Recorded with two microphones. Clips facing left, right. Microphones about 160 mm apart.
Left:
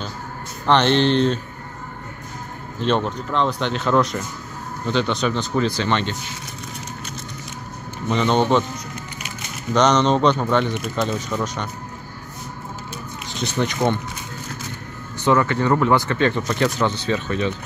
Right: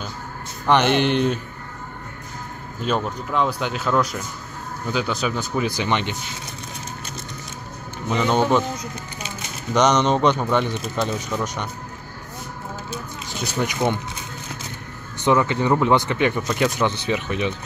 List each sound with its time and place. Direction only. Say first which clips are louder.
0.7 s speech: left 1 dB; 10° right (ahead or behind)
2.8 s speech: left 3 dB; 5° right (ahead or behind)
8.1 s speech: left 1 dB; 10° right (ahead or behind)
9.8 s speech: left 1 dB; 10° right (ahead or behind)
13.4 s speech: left 2 dB; 10° right (ahead or behind)
15.2 s speech: left 1 dB; 15° right (ahead or behind)